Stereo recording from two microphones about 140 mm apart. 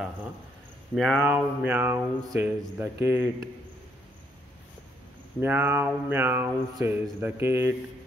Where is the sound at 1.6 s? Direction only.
15° right (ahead or behind).